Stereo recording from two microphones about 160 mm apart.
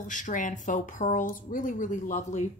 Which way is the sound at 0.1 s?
55° left (ahead or behind).